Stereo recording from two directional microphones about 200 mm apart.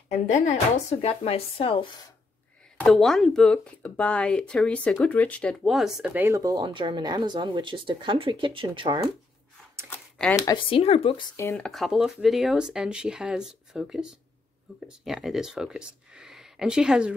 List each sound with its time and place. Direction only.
0.3 s speech: 35° left (ahead or behind)
2.8 s speech: centre (ahead or behind); by 9.0 s 20° right (ahead or behind)
9.8 s a sound: 5° left (ahead or behind)
10.3 s speech: 20° left (ahead or behind)
11.3 s speech: 15° left (ahead or behind)
11.6 s speech: centre (ahead or behind)